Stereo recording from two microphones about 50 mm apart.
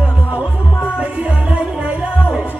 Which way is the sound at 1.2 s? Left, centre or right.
Right.